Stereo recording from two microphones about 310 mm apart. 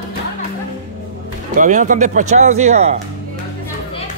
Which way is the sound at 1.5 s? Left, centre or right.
Right.